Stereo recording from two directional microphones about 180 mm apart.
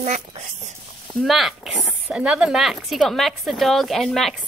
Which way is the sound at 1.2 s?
Centre (ahead or behind).